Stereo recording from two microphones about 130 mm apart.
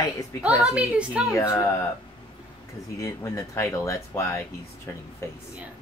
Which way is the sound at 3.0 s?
25° left (ahead or behind).